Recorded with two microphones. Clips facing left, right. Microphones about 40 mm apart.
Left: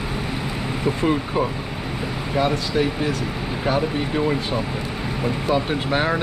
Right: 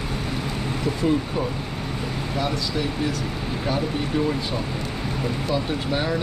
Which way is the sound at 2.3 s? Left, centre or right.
Left.